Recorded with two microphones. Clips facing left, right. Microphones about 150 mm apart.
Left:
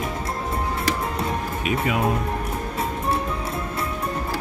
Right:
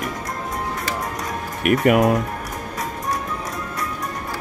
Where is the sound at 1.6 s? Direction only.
65° right (ahead or behind).